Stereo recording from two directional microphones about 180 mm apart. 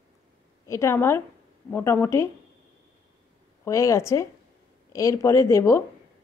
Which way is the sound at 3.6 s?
15° left (ahead or behind).